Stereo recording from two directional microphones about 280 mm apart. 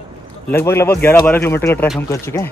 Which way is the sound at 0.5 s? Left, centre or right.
Centre.